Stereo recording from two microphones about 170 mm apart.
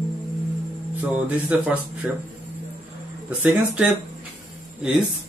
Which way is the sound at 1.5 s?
10° right (ahead or behind).